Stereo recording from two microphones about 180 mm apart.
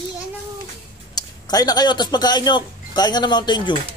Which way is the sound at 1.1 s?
20° left (ahead or behind).